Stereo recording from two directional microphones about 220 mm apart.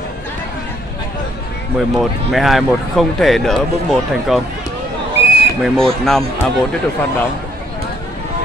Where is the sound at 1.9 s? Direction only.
Centre (ahead or behind).